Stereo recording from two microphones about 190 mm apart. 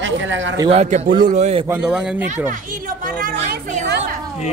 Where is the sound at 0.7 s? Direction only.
40° right (ahead or behind).